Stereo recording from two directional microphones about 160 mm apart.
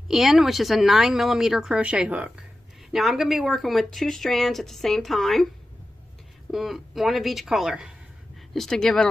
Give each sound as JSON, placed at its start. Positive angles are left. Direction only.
{"t": 0.1, "sound": "speech", "side_deg": 0}
{"t": 6.5, "sound": "speech", "side_deg": 0}